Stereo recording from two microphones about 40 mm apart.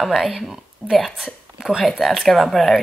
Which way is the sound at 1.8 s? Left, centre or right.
Centre.